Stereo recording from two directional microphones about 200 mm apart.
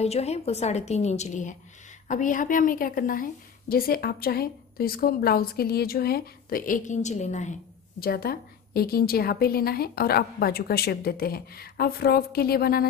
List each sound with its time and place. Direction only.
0.0 s a woman's voice: 30° left (ahead or behind)
8.0 s a woman's voice: 50° left (ahead or behind)